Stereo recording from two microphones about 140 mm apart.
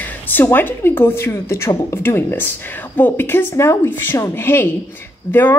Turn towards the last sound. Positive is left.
turn(degrees=15)  # may be behind; listen again after turning